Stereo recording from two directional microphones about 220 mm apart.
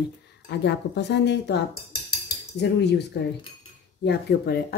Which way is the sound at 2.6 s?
50° left (ahead or behind).